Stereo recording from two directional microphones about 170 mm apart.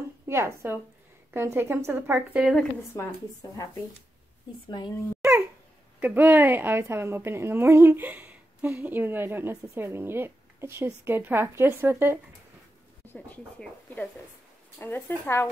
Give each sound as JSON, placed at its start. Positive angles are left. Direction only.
{"t": 0.3, "sound": "speech", "side_deg": -15}
{"t": 2.9, "sound": "a woman's voice", "side_deg": 20}
{"t": 4.6, "sound": "a woman's voice", "side_deg": 25}
{"t": 5.9, "sound": "speech", "side_deg": -10}
{"t": 13.0, "sound": "speech", "side_deg": 10}